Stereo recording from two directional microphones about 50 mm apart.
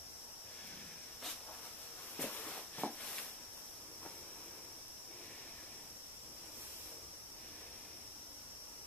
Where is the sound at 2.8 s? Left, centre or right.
Left.